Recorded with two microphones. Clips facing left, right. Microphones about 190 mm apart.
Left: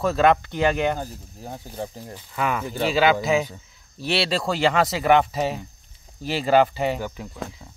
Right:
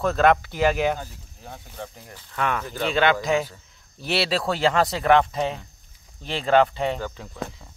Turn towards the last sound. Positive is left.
turn(degrees=10)  # may be behind; listen again after turning